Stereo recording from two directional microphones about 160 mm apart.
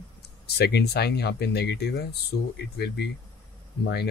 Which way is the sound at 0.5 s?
90° left.